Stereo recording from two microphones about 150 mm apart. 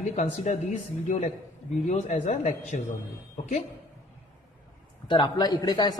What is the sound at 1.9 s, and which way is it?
Speech, 55° left (ahead or behind).